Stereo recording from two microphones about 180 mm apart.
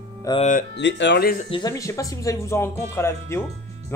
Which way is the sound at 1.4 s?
25° left (ahead or behind).